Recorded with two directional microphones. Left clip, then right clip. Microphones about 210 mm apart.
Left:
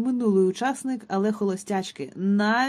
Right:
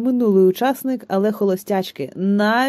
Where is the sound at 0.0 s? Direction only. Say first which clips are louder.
Right 7 dB; 30° right (ahead or behind).